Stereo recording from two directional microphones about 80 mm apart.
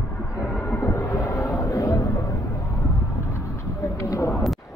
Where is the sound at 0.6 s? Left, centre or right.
Left.